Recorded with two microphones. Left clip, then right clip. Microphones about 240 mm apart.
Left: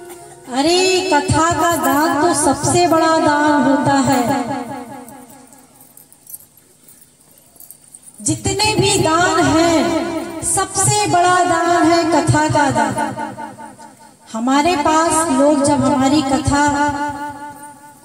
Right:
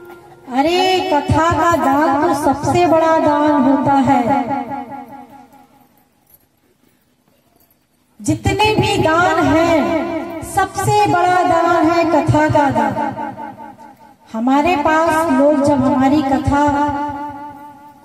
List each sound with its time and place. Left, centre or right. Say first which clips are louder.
0.5 s a sound: right 1 dB; right
8.3 s music: right 3 dB; right
14.3 s a woman's voice: right 1 dB; right